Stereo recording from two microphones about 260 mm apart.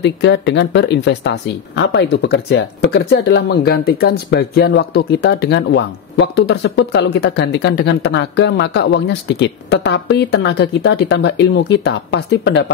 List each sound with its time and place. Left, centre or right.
0.0 s speech: left